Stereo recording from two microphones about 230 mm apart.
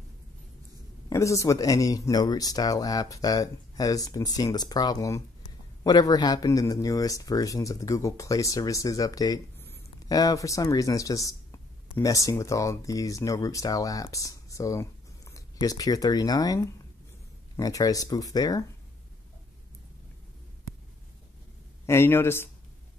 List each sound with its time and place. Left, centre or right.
1.0 s a man's voice: centre
21.8 s a man's voice: centre